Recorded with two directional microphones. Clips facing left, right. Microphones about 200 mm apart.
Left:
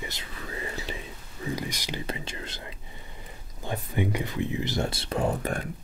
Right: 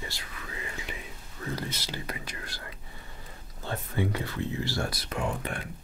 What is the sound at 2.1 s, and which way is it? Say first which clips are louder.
Speech: left 4 dB; 25° left (ahead or behind).